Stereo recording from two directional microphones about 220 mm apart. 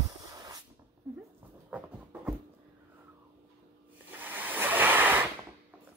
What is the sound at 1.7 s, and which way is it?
Music, 5° right (ahead or behind).